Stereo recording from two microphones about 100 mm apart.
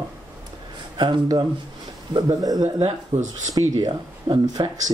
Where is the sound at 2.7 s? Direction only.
85° right.